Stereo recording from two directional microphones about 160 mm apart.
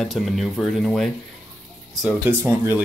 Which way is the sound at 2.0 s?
15° right (ahead or behind).